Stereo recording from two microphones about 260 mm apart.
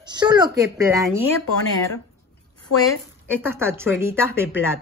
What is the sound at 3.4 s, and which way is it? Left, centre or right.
Speech, centre.